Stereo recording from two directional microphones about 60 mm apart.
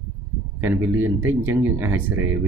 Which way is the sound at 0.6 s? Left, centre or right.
Right.